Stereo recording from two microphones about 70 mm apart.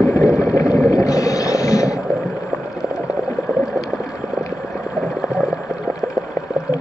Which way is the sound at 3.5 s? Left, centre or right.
Centre.